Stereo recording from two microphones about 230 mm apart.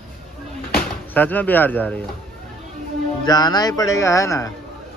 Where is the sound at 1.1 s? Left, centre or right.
Centre.